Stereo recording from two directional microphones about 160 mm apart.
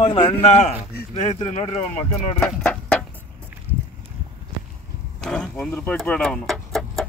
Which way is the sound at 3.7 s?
10° right (ahead or behind).